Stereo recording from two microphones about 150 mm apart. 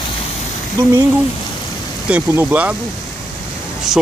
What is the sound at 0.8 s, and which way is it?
Speech, 20° right (ahead or behind).